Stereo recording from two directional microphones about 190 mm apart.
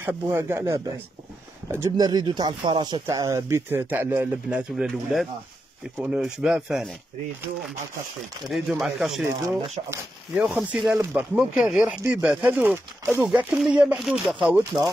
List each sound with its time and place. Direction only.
0.0 s speech: 10° right (ahead or behind)
8.5 s speech: centre (ahead or behind)
9.8 s speech: 30° right (ahead or behind)
10.3 s speech: 10° right (ahead or behind)